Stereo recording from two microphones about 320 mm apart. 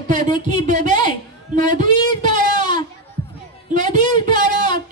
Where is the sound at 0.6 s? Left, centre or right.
Right.